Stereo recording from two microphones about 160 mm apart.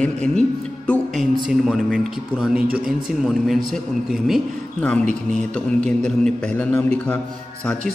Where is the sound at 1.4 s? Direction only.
5° right (ahead or behind).